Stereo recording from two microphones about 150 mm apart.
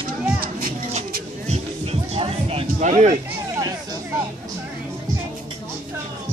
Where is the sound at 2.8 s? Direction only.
50° right (ahead or behind).